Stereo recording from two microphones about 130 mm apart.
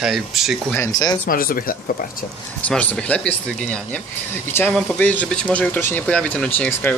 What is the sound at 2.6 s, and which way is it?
Speech, 10° left (ahead or behind).